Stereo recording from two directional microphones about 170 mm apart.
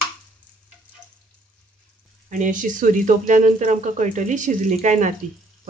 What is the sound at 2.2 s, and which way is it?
Speech, 50° right (ahead or behind).